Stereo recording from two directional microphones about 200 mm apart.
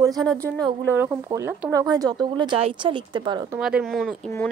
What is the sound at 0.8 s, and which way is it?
A woman's voice, 10° right (ahead or behind).